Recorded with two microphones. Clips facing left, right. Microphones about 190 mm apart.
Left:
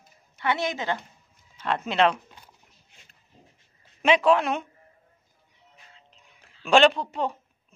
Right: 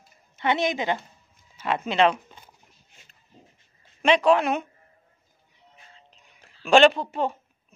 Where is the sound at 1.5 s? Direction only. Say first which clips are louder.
Right 1 dB; 5° right (ahead or behind).